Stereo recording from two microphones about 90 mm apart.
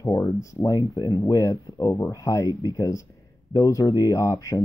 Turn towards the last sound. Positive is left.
turn(degrees=40)  # may be behind; listen again after turning